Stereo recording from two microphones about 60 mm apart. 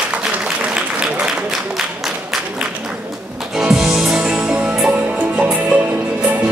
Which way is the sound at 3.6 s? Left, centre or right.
Centre.